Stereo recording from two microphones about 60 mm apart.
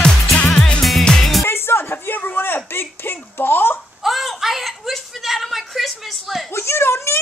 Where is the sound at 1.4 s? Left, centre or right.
Left.